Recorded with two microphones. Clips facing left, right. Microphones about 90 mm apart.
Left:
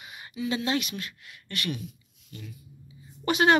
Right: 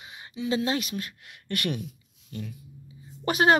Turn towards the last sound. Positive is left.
turn(degrees=-40)  # may be behind; listen again after turning